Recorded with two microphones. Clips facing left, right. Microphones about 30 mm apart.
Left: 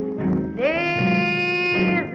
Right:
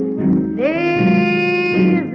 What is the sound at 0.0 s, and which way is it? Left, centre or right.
Music, centre.